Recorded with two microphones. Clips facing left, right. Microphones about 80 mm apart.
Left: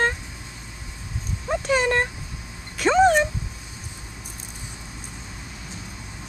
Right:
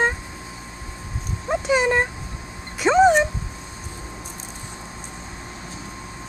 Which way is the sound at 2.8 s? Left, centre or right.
Centre.